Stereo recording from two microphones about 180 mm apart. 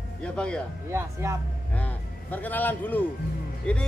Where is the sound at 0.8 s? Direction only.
15° right (ahead or behind).